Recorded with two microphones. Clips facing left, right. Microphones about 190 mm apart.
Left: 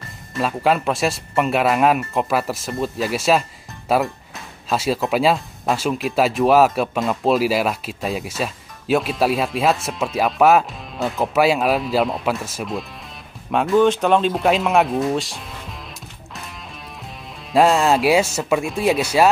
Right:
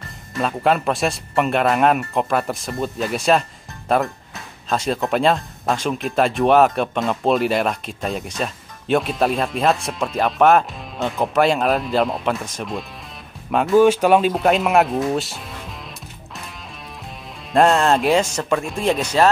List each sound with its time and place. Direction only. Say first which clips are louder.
0.3 s speech: even; centre (ahead or behind)
17.5 s speech: even; 5° left (ahead or behind)